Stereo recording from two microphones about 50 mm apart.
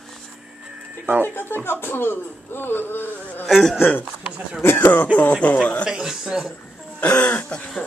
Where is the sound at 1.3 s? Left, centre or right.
Left.